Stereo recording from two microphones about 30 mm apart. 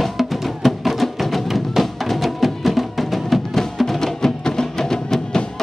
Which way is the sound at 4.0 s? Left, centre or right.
Left.